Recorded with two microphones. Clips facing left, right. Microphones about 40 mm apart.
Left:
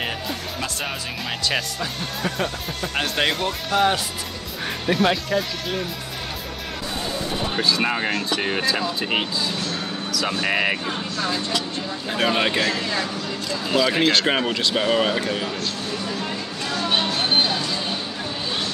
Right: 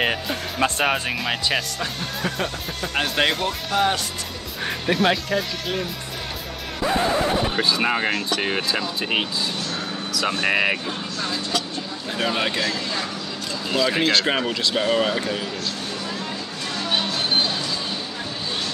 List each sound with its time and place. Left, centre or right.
0.6 s speech: right
1.2 s speech: centre
6.8 s music: right
7.5 s speech: centre
10.4 s speech: centre
12.2 s speech: centre
13.7 s speech: centre